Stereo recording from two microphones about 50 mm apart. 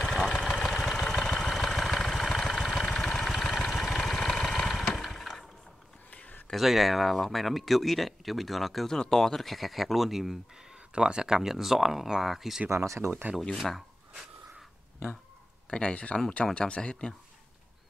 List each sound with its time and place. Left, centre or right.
0.0 s vehicle: centre
6.0 s a sound: left
6.5 s speech: centre
10.7 s speech: centre
12.6 s speech: right
15.7 s speech: left